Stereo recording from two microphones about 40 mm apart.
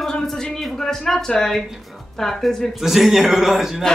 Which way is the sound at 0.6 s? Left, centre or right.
Centre.